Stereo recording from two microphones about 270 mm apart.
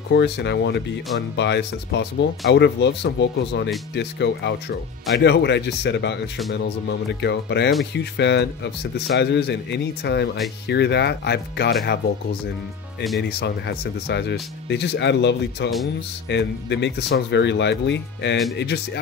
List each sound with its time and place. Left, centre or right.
0.1 s speech: left
13.2 s speech: left